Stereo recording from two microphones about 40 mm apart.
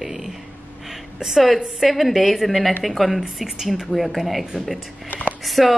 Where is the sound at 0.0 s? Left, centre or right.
Centre.